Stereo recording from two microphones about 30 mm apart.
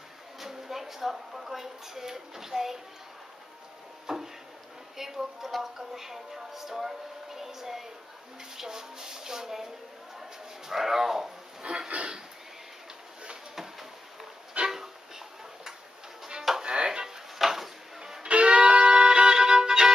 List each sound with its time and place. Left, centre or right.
0.4 s a sound: centre
1.3 s speech: centre
4.1 s speech: centre
4.9 s a sound: centre
5.6 s speech: centre
10.7 s speech: centre
11.6 s speech: right
14.7 s music: centre
16.6 s music: right
17.4 s a sound: centre
18.3 s music: right